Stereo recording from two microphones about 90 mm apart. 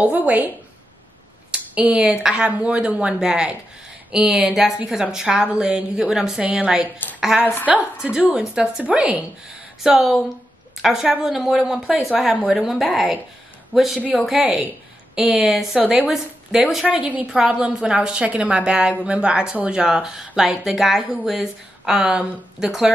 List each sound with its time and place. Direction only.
0.0 s a woman's voice: 15° right (ahead or behind)
1.5 s a woman's voice: 15° right (ahead or behind)